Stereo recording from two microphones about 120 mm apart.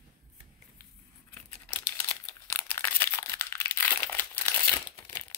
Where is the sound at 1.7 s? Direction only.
15° left (ahead or behind).